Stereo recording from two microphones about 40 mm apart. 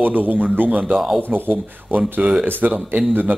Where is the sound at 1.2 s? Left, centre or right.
Right.